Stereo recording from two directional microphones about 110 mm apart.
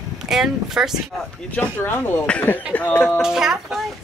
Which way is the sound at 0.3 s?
5° right (ahead or behind).